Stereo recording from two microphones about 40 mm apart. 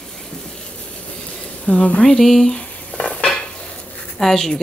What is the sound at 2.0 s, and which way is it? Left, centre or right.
Speech, centre.